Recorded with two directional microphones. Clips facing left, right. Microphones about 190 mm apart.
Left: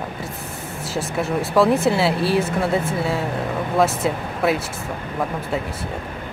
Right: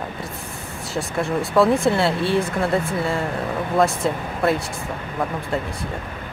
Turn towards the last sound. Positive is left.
turn(degrees=5)  # may be behind; listen again after turning